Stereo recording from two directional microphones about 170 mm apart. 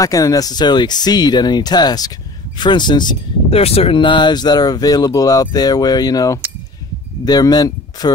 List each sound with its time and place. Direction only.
0.0 s speech: 20° left (ahead or behind)